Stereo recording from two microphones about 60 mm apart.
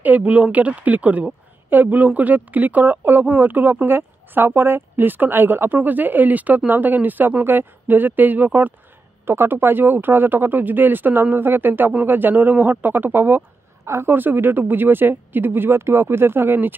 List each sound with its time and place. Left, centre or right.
0.0 s a woman's voice: right
9.2 s a woman's voice: right